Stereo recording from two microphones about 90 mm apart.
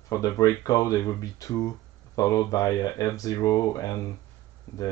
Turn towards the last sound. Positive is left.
turn(degrees=40)  # may be behind; listen again after turning